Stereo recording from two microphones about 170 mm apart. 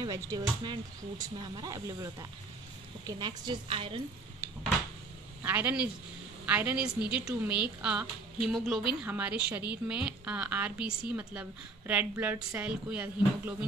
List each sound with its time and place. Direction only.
0.0 s speech: 20° right (ahead or behind)
5.4 s a woman's voice: 10° right (ahead or behind)